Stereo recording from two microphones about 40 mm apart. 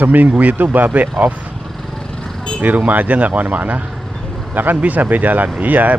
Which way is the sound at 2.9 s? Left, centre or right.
Right.